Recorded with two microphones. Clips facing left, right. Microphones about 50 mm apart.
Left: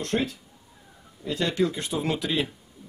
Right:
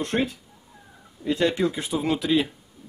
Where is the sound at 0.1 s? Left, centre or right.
Right; by 1.9 s centre.